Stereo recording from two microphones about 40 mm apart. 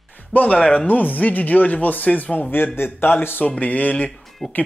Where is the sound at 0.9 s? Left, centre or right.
Left.